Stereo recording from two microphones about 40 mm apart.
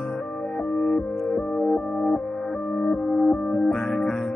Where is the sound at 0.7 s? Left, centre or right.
Left.